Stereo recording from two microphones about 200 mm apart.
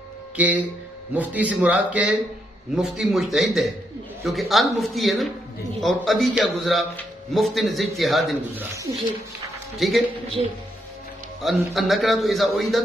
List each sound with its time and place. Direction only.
0.4 s a man's voice: 5° right (ahead or behind)
9.8 s a man's voice: centre (ahead or behind)
10.4 s speech: 30° right (ahead or behind)
11.4 s a man's voice: centre (ahead or behind)